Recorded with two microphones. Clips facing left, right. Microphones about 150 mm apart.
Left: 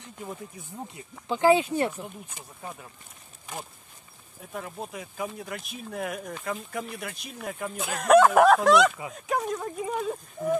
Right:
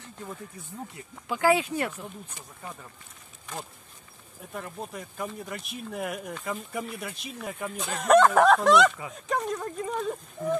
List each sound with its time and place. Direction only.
0.0 s speech: 15° left (ahead or behind)
4.6 s speech: 5° left (ahead or behind)